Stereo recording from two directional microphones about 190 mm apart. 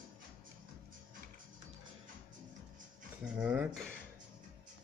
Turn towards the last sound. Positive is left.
turn(degrees=-5)  # may be behind; listen again after turning